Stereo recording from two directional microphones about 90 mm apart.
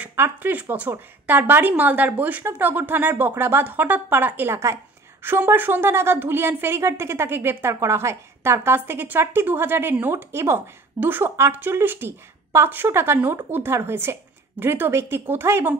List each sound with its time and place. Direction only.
0.1 s a woman's voice: 25° right (ahead or behind)